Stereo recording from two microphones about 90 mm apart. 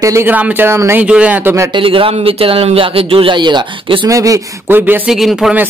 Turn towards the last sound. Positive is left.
turn(degrees=-5)  # may be behind; listen again after turning